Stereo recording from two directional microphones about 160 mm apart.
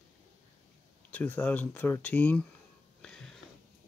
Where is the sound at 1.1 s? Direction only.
10° left (ahead or behind).